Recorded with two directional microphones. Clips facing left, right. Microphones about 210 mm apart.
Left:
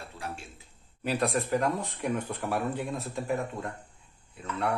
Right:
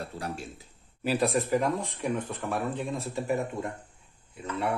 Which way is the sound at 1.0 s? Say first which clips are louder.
Right 2 dB; centre (ahead or behind).